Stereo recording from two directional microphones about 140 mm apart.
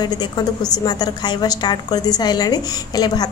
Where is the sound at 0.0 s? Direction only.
30° left (ahead or behind).